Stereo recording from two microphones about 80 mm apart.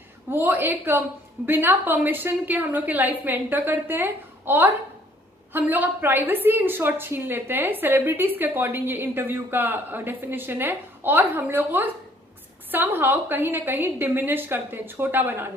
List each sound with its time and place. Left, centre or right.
0.3 s a woman's voice: right